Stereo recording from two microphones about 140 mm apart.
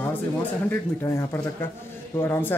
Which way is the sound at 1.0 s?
20° left (ahead or behind).